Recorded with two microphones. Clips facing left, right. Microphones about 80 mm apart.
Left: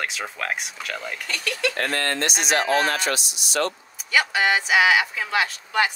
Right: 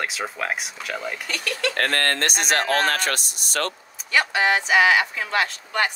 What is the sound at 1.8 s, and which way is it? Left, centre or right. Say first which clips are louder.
Speech: right 2 dB; right.